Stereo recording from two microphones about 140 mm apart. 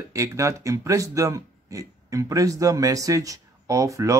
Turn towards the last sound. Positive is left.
turn(degrees=-20)  # may be behind; listen again after turning